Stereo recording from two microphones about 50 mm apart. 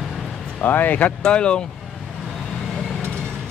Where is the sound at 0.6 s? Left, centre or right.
Left.